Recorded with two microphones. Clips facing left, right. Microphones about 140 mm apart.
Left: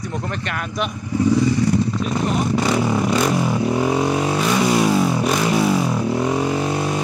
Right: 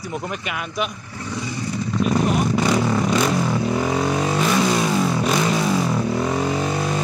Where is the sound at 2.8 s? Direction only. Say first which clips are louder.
Left 1 dB; 10° left (ahead or behind).